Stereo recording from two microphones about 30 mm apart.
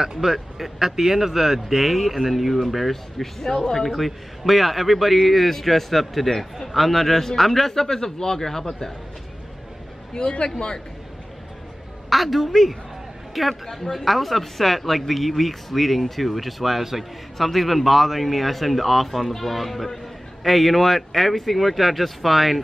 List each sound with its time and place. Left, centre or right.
0.0 s a man's voice: centre
3.9 s a man's voice: centre
12.1 s a man's voice: centre